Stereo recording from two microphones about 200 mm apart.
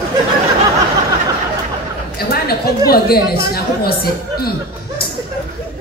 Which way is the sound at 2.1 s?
50° left (ahead or behind).